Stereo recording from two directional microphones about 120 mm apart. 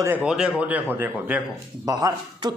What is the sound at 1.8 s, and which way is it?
Speech, 35° right (ahead or behind).